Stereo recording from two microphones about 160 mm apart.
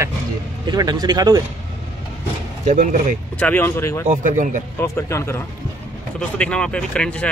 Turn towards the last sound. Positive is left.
turn(degrees=5)  # may be behind; listen again after turning